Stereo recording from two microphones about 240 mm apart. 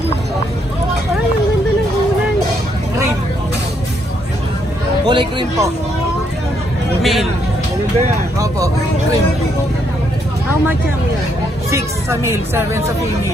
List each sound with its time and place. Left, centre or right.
5.0 s speech: centre
7.0 s speech: centre
11.7 s speech: centre